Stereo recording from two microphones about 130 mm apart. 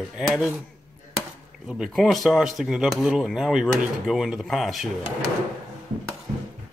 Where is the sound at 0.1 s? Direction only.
5° right (ahead or behind).